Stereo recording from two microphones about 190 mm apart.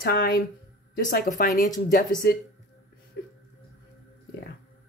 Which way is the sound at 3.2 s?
60° left (ahead or behind).